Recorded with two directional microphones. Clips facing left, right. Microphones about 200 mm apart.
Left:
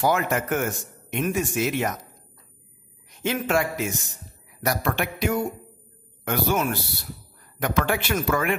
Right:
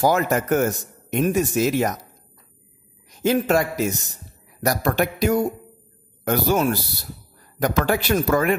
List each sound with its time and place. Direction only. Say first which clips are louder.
0.0 s a man's voice: right 4 dB; 40° right (ahead or behind)
3.1 s a man's voice: right 6 dB; 40° right (ahead or behind)